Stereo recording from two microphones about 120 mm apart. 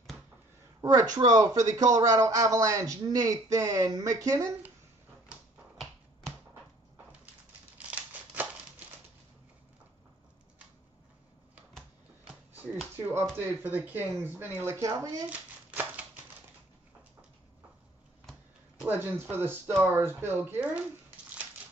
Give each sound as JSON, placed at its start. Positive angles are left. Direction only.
{"t": 0.7, "sound": "speech", "side_deg": -30}
{"t": 7.7, "sound": "crumpling", "side_deg": -10}
{"t": 12.9, "sound": "speech", "side_deg": -20}
{"t": 15.2, "sound": "hands", "side_deg": -15}
{"t": 18.9, "sound": "speech", "side_deg": -15}